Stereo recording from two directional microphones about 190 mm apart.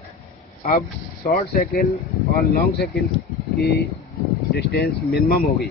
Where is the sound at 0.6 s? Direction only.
45° left (ahead or behind).